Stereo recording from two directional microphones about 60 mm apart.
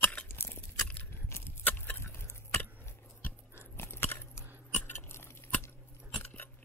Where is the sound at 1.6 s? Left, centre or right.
Left.